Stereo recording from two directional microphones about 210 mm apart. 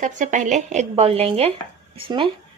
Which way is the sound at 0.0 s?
35° right (ahead or behind).